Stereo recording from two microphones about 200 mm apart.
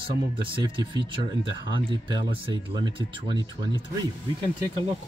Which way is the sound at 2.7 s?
20° right (ahead or behind).